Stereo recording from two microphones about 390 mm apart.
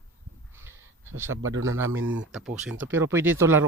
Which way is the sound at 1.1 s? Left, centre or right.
Centre.